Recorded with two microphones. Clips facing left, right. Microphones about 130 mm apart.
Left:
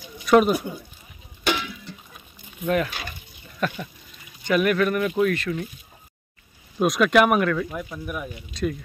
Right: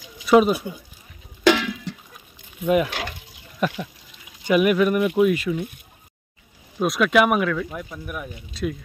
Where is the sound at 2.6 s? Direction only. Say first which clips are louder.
Right 3 dB; 10° right (ahead or behind).